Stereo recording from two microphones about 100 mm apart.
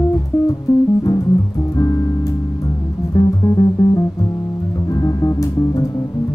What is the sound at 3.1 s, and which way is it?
Music, 35° left (ahead or behind).